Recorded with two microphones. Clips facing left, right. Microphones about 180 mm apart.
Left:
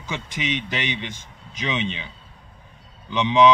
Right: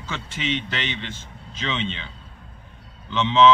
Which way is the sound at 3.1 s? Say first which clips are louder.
Even; 15° left (ahead or behind).